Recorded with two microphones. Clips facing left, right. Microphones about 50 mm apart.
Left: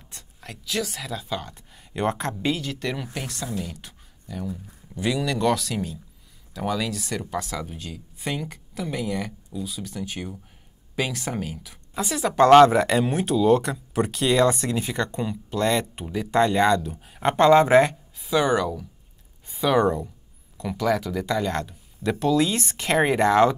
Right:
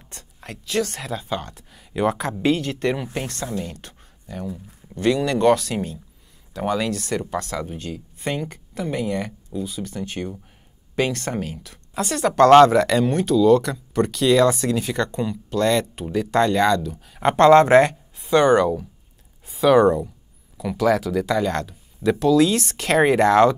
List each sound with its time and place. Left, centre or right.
0.7 s speech: centre
2.7 s speech: right
4.9 s speech: centre
5.2 s speech: centre
6.7 s speech: centre